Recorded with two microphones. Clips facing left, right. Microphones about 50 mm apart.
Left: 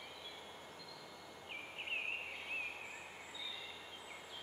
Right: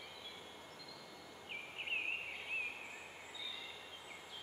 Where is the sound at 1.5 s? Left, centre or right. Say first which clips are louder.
Right 1 dB; centre.